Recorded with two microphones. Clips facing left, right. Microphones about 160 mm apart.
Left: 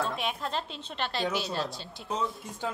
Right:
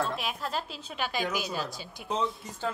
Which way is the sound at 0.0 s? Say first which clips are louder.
Even; centre (ahead or behind).